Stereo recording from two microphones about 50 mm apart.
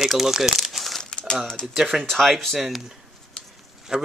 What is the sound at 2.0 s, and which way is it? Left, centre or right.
Speech, centre.